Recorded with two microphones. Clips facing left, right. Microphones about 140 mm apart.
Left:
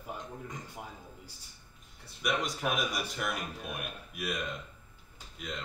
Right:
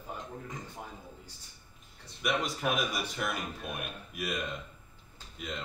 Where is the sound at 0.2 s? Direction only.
Centre (ahead or behind).